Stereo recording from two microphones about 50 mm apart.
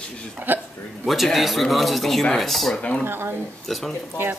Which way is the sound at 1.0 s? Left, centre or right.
Centre.